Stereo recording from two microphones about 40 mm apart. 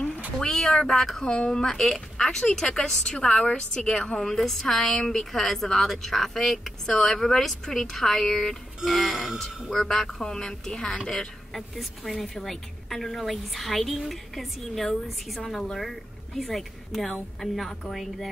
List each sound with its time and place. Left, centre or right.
0.4 s speech: centre
1.2 s a woman's voice: left
8.8 s a woman's voice: centre